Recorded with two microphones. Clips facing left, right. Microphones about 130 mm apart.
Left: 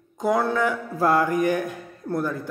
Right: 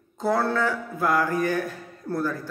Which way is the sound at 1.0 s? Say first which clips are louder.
Left 3 dB; 30° left (ahead or behind).